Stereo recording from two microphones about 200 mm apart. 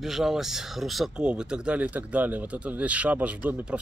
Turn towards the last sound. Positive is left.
turn(degrees=-5)  # may be behind; listen again after turning